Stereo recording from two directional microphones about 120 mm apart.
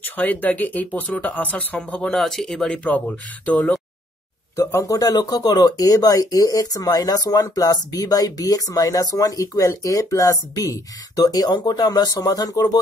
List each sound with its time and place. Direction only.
0.0 s speech: 15° left (ahead or behind)
4.6 s speech: 25° left (ahead or behind)